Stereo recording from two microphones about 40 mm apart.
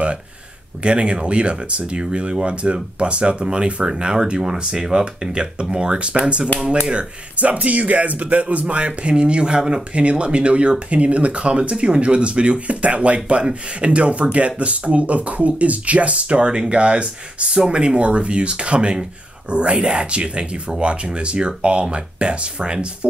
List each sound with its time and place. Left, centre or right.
0.8 s speech: right